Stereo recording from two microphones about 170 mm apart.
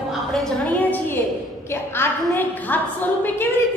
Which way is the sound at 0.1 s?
Centre (ahead or behind).